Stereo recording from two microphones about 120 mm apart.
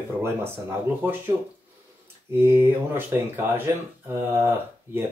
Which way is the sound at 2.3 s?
20° right (ahead or behind).